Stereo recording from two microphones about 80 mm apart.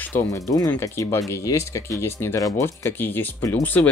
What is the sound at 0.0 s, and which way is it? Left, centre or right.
Music, left.